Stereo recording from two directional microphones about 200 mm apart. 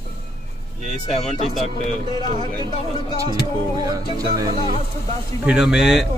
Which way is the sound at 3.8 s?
20° right (ahead or behind).